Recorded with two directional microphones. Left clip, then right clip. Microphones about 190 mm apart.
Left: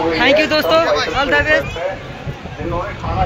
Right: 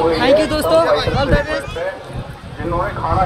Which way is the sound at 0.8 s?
30° right (ahead or behind).